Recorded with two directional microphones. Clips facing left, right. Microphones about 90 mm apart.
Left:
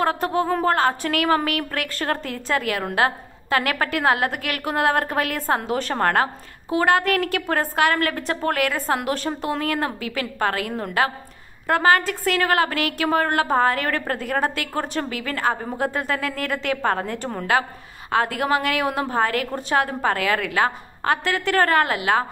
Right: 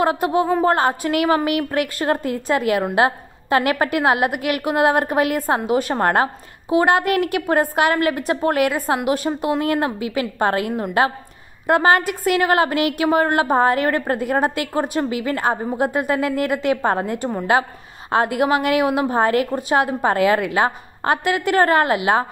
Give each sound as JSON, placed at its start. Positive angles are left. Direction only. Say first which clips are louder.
{"t": 0.0, "sound": "a woman's voice", "louder": "right 3 dB", "side_deg": -15}